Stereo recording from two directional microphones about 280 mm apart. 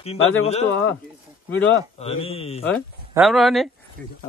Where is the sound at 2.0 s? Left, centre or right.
Left.